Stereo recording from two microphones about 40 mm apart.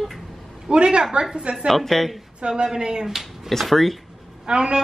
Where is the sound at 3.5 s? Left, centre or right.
Centre.